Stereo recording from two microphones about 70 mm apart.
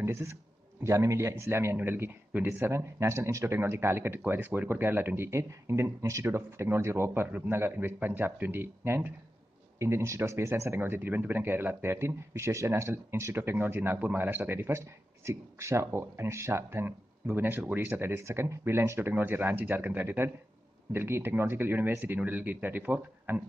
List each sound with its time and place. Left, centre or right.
0.0 s speech: right
3.5 s speech: right
7.2 s speech: right
18.1 s speech: right